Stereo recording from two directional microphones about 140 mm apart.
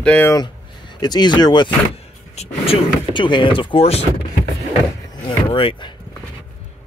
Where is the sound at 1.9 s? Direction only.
45° left (ahead or behind).